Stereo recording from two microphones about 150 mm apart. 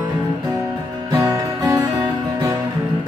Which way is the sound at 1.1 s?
25° right (ahead or behind).